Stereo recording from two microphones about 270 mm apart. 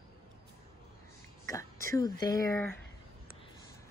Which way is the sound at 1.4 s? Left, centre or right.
Centre.